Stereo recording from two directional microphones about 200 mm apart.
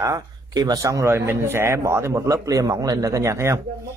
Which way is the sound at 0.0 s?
20° right (ahead or behind).